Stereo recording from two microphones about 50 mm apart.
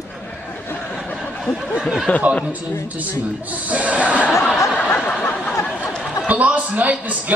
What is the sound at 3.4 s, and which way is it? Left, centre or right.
Speech, right.